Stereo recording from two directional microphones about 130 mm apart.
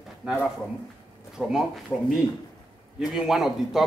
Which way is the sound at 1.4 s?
5° right (ahead or behind).